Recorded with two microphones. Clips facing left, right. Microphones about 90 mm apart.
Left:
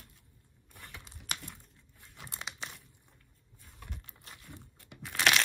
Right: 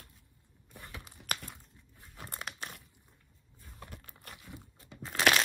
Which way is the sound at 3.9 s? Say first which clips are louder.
Right 1 dB; 55° right (ahead or behind).